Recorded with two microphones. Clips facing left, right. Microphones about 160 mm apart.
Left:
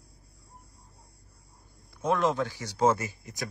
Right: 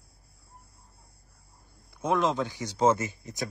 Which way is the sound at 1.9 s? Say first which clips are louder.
Even; 15° right (ahead or behind).